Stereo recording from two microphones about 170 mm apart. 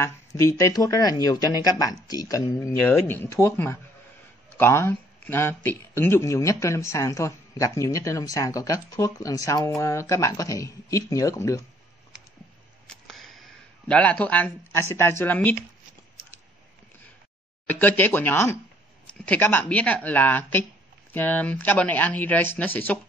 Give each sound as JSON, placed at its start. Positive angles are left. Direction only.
{"t": 0.0, "sound": "speech", "side_deg": 20}
{"t": 12.8, "sound": "a sound", "side_deg": 0}
{"t": 17.6, "sound": "speech", "side_deg": 10}